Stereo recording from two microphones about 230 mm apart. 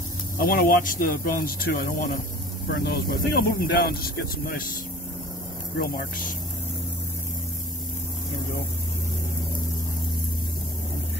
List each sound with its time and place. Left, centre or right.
0.4 s speech: left
5.8 s speech: left